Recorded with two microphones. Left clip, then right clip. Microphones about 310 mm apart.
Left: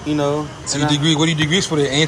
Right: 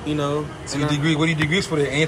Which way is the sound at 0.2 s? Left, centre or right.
Centre.